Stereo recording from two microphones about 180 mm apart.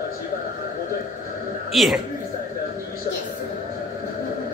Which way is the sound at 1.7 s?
Centre (ahead or behind).